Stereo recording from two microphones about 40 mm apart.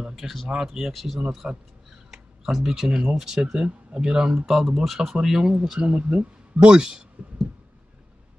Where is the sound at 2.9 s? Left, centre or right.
Right.